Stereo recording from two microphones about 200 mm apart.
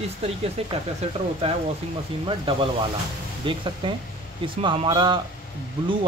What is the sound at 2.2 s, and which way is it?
Speech, 25° right (ahead or behind).